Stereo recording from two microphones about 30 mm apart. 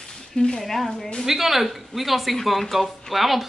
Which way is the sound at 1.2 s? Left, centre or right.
Centre.